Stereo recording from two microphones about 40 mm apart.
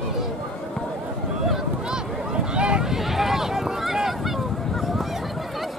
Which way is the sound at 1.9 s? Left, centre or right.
Right.